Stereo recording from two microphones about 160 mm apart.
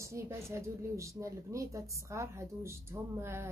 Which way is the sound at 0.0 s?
15° right (ahead or behind).